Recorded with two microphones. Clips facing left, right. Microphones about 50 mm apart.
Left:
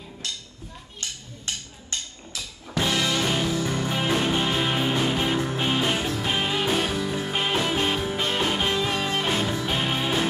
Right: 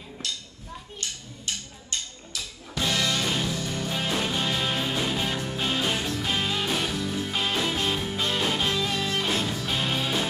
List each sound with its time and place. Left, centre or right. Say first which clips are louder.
2.9 s music: left 2 dB; centre
3.6 s music: left 4 dB; left